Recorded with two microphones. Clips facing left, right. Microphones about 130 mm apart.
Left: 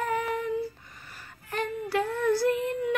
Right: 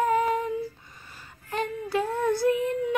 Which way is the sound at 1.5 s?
25° right (ahead or behind).